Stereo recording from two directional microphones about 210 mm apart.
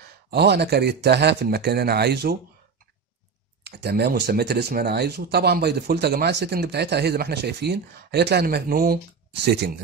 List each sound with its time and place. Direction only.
0.3 s speech: 50° right (ahead or behind)
3.6 s speech: 50° right (ahead or behind)